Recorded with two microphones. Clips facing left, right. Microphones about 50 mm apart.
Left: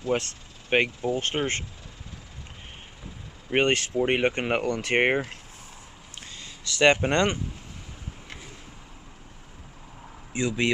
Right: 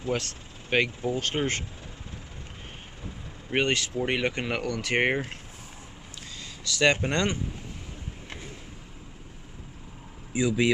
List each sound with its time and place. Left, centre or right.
0.1 s speech: left
3.5 s speech: left
6.1 s a sound: left
10.3 s speech: centre